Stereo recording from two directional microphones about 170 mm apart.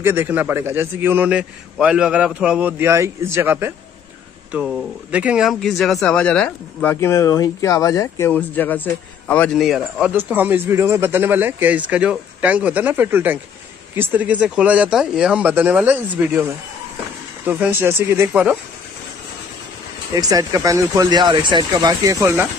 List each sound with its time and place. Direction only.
0.0 s a man's voice: 15° right (ahead or behind)
17.5 s a man's voice: 10° right (ahead or behind)
20.2 s speech: 20° right (ahead or behind)